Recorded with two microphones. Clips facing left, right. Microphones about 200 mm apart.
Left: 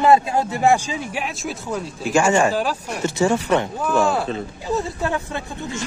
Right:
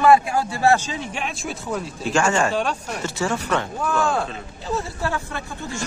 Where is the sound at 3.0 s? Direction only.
20° left (ahead or behind).